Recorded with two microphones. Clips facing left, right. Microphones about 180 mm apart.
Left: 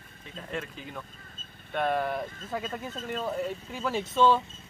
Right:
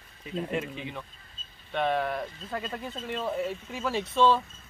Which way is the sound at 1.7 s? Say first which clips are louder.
Even; centre (ahead or behind).